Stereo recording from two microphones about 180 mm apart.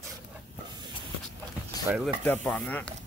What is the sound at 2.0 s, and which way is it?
Speech, 5° left (ahead or behind).